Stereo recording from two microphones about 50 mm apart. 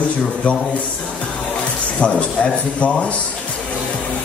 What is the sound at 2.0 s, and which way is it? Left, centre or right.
A man's voice, left.